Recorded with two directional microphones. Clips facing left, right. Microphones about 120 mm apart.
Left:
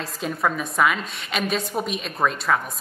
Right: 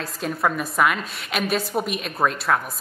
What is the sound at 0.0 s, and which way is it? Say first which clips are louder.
A woman's voice: right 1 dB; centre (ahead or behind).